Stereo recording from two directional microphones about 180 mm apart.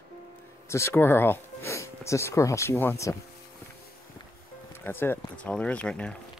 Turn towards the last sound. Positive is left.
turn(degrees=5)  # may be behind; listen again after turning